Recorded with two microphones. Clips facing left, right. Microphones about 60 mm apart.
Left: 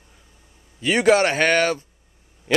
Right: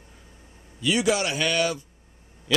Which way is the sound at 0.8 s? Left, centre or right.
Left.